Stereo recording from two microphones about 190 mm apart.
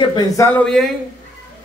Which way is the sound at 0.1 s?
20° left (ahead or behind).